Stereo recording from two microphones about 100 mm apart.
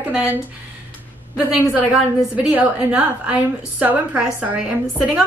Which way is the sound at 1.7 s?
10° right (ahead or behind).